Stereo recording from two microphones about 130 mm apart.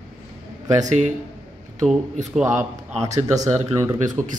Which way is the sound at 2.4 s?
20° right (ahead or behind).